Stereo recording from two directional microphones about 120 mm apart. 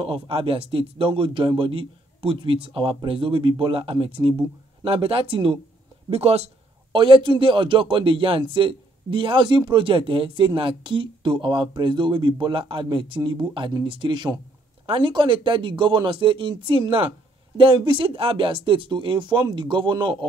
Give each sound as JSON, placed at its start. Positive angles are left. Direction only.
{"t": 0.0, "sound": "speech", "side_deg": -50}
{"t": 6.9, "sound": "speech", "side_deg": -45}